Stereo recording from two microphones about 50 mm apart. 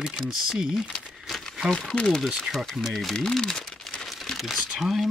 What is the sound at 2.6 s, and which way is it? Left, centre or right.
Speech, centre.